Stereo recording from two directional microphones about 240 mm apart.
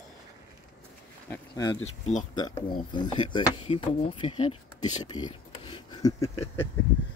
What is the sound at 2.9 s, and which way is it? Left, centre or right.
Speech, centre.